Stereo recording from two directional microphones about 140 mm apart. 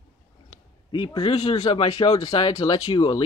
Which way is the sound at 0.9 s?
40° left (ahead or behind).